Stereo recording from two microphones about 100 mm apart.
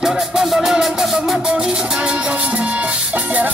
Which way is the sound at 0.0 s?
5° right (ahead or behind).